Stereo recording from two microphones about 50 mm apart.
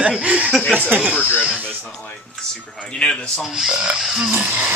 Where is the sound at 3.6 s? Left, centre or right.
Centre.